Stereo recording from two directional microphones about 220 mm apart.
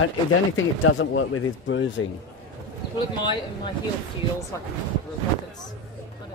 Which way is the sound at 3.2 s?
20° left (ahead or behind).